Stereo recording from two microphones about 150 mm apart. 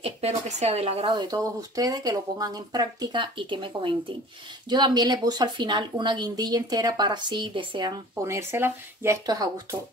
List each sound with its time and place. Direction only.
0.0 s speech: 45° right (ahead or behind)
1.1 s a woman's voice: 25° right (ahead or behind)
8.2 s a woman's voice: 20° right (ahead or behind)